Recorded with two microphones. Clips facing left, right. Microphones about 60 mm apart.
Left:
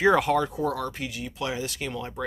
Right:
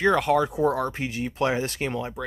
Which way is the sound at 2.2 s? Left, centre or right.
Centre.